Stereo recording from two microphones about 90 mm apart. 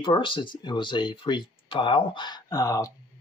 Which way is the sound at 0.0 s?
70° left (ahead or behind).